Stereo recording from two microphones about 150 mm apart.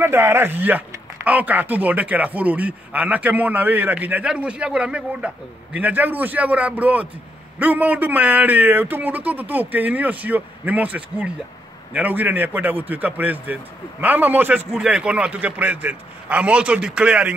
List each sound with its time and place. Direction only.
0.0 s speech: 15° right (ahead or behind)